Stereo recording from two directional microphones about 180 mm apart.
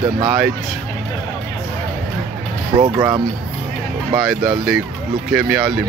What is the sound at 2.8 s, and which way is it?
Speech, 20° right (ahead or behind).